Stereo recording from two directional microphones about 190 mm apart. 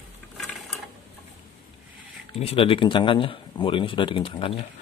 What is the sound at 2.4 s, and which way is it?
Speech, 30° left (ahead or behind).